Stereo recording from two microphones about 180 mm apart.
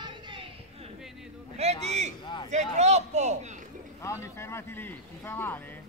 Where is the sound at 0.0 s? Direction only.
25° right (ahead or behind).